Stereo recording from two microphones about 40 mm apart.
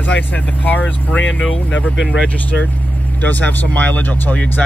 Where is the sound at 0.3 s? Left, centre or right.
Left.